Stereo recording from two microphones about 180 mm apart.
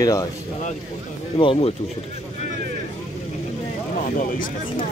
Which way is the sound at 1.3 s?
30° left (ahead or behind).